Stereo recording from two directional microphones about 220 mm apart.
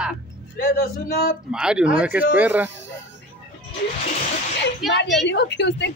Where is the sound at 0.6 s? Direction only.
40° left (ahead or behind).